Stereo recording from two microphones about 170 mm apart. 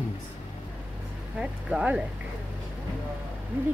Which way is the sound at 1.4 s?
5° right (ahead or behind).